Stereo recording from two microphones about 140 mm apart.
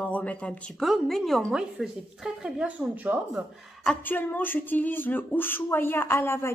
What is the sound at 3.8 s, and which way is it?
Speech, 15° left (ahead or behind).